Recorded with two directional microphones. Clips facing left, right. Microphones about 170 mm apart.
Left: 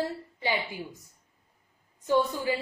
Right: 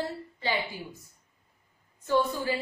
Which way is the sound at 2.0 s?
15° left (ahead or behind).